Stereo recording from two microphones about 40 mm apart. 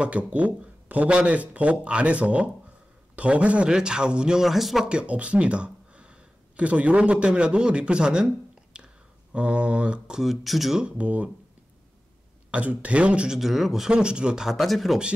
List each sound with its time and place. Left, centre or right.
0.0 s speech: right
3.6 s speech: right
4.4 s speech: centre
4.8 s speech: right
8.7 s a sound: right
10.2 s speech: centre
10.8 s speech: right
12.4 s speech: right
13.3 s speech: centre
13.8 s speech: right
14.6 s speech: centre